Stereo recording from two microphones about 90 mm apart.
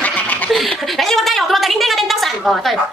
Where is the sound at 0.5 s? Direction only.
Centre (ahead or behind).